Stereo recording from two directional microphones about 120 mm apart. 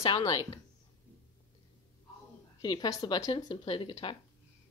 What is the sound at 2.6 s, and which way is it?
Speech, 35° left (ahead or behind).